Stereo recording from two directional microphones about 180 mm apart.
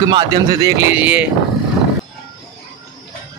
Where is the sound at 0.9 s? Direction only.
10° right (ahead or behind).